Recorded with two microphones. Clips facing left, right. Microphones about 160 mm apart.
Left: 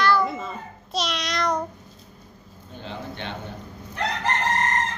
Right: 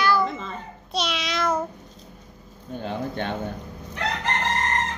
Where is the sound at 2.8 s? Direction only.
50° right (ahead or behind).